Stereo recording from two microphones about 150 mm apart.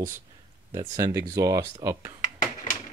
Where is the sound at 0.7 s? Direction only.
25° right (ahead or behind).